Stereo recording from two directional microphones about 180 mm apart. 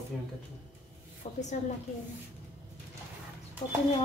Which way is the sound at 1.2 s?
45° left (ahead or behind).